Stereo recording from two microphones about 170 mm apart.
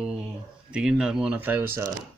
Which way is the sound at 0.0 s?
5° right (ahead or behind).